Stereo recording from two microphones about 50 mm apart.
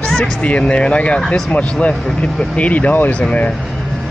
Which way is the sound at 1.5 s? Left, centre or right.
Left.